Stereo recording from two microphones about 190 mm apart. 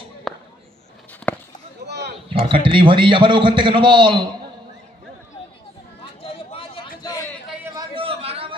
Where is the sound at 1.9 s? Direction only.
60° right (ahead or behind).